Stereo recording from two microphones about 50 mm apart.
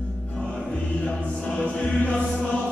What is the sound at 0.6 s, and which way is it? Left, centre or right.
Chant, left.